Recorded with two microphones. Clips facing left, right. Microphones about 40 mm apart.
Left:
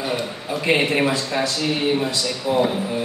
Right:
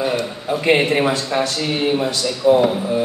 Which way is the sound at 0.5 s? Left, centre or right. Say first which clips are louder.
Right 4 dB; right.